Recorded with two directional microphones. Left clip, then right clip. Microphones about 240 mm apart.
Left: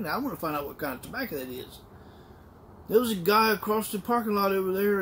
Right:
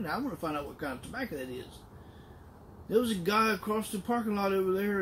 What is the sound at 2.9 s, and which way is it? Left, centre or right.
Speech, centre.